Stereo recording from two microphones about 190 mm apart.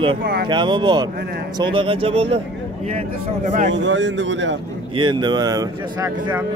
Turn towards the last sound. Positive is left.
turn(degrees=-15)  # may be behind; listen again after turning